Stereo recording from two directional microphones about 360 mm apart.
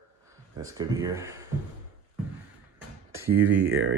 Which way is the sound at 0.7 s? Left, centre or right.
Centre.